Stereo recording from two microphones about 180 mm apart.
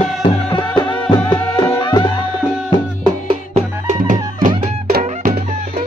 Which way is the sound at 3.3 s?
40° right (ahead or behind).